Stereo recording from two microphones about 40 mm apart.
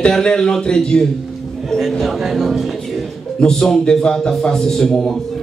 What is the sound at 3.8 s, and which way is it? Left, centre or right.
Speech, left.